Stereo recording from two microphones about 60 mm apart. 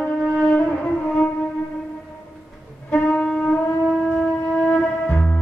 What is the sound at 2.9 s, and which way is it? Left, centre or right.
Music, left.